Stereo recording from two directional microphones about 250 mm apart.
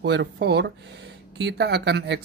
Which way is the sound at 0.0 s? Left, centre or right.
Right.